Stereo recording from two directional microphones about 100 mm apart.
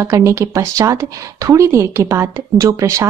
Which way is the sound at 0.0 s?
30° right (ahead or behind).